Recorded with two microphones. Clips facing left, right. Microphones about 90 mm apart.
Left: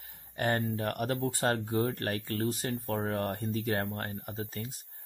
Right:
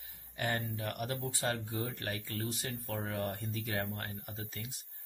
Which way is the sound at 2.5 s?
40° left (ahead or behind).